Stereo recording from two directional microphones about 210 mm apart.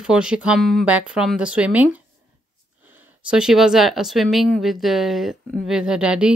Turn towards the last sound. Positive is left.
turn(degrees=-5)  # may be behind; listen again after turning